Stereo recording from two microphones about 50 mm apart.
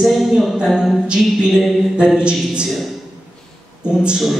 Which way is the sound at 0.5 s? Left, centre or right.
Centre.